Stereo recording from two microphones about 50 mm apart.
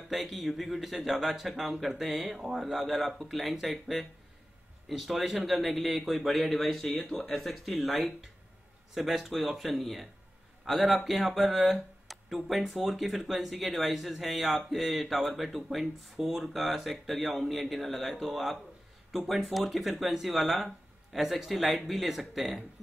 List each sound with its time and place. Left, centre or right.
0.1 s speech: centre